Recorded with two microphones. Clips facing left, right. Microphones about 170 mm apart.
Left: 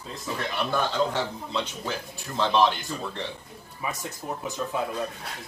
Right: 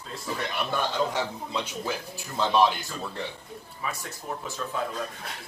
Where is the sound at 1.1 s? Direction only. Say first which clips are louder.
Left 1 dB; 10° right (ahead or behind).